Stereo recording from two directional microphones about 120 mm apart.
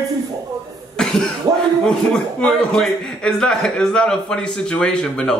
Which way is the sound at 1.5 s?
30° right (ahead or behind).